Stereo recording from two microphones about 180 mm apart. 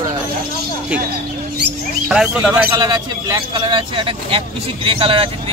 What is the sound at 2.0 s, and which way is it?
Speech, 5° right (ahead or behind).